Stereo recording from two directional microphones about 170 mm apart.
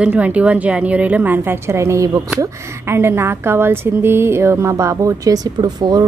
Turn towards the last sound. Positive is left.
turn(degrees=-25)  # may be behind; listen again after turning